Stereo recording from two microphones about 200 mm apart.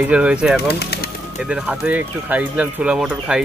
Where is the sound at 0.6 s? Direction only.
55° left (ahead or behind).